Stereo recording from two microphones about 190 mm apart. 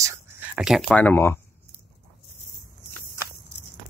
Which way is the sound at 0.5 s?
Centre (ahead or behind).